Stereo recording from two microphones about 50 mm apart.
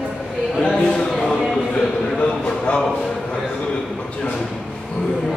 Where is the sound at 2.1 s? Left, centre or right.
Left.